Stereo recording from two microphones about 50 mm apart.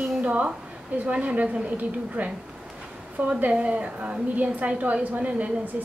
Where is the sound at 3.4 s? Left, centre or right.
Right.